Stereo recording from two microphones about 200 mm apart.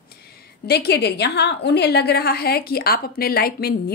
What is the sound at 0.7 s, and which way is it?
A woman's voice, 55° left (ahead or behind).